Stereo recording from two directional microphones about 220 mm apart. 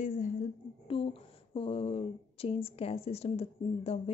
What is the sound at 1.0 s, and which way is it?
Speech, 25° left (ahead or behind).